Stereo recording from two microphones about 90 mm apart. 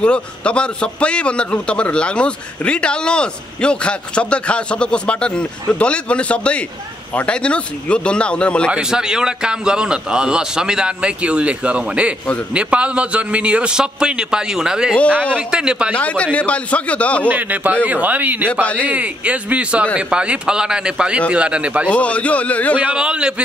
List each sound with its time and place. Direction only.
0.0 s a man's voice: 10° left (ahead or behind)
8.7 s a man's voice: 10° right (ahead or behind)
15.9 s a man's voice: 15° left (ahead or behind)
17.3 s a man's voice: 20° right (ahead or behind)
18.5 s a man's voice: 15° left (ahead or behind)
18.9 s a man's voice: 15° right (ahead or behind)
21.8 s a man's voice: 15° left (ahead or behind)
22.8 s a man's voice: 10° right (ahead or behind)